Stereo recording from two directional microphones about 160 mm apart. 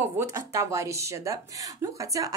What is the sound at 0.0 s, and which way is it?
A woman's voice, 15° right (ahead or behind).